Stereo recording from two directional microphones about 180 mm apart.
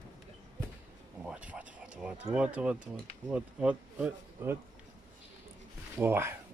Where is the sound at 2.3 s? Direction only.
5° right (ahead or behind).